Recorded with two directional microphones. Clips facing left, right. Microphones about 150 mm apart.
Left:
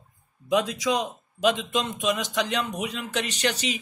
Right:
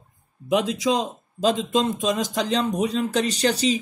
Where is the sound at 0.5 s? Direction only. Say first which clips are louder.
Right 3 dB; 25° right (ahead or behind).